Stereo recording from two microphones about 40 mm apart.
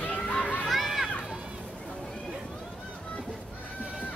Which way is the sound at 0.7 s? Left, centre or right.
Centre.